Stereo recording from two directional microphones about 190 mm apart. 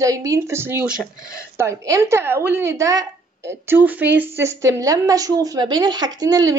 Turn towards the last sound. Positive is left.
turn(degrees=-20)  # may be behind; listen again after turning